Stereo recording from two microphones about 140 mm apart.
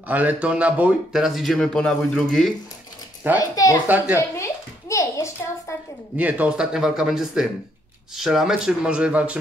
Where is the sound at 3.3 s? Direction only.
15° right (ahead or behind).